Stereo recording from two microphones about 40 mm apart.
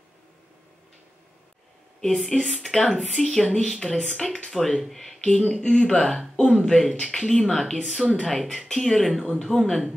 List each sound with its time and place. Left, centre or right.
2.0 s speech: centre
5.2 s speech: centre